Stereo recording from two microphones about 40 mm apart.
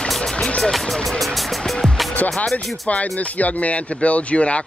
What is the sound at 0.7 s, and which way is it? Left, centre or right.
Music, centre.